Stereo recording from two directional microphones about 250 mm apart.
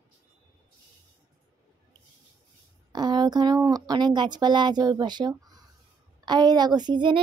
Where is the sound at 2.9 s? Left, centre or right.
Centre.